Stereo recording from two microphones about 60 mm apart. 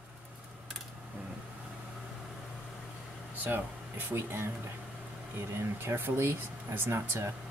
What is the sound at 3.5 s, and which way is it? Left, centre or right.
Speech, right.